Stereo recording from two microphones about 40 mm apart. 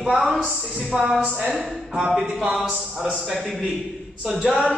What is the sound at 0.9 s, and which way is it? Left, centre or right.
Speech, right.